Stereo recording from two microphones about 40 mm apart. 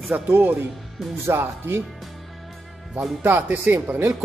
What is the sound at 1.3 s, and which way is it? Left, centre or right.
Speech, right.